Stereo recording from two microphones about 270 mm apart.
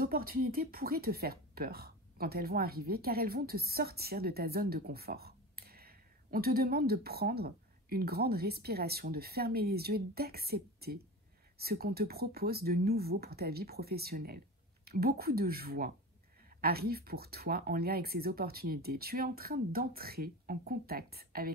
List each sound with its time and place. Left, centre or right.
0.0 s speech: right